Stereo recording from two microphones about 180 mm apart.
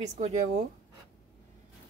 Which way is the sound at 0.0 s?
40° right (ahead or behind).